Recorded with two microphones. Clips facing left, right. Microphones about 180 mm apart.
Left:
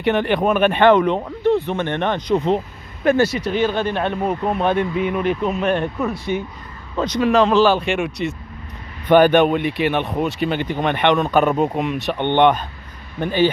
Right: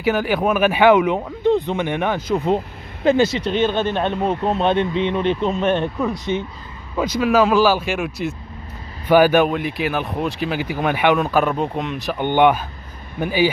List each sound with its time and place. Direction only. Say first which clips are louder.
0.0 s speech: left 1 dB; 5° right (ahead or behind)
3.0 s speech: even; 20° right (ahead or behind)
7.0 s speech: even; 5° right (ahead or behind)